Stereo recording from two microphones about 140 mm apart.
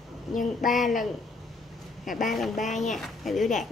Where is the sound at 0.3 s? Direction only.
70° left (ahead or behind).